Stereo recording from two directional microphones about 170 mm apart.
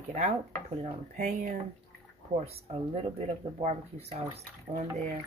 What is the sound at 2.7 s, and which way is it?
Speech, 35° right (ahead or behind).